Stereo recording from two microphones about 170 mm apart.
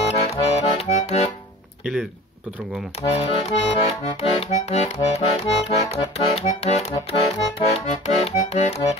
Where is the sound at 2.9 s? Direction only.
35° left (ahead or behind).